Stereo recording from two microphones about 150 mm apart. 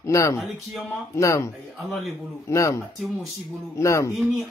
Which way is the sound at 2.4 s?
20° left (ahead or behind).